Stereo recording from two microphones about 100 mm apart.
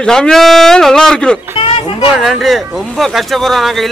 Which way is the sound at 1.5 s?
65° left (ahead or behind).